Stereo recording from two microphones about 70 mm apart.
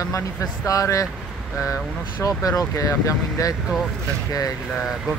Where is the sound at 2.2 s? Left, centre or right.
Left.